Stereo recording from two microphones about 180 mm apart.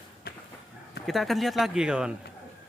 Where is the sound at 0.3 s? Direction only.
60° left (ahead or behind).